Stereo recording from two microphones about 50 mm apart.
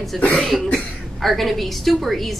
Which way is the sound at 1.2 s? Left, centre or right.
Centre.